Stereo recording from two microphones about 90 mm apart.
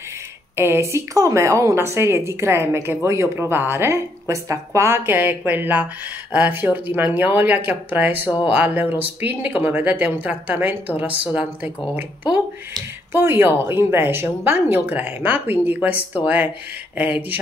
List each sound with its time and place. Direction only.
0.6 s a woman's voice: 30° right (ahead or behind)
13.1 s a woman's voice: 25° right (ahead or behind)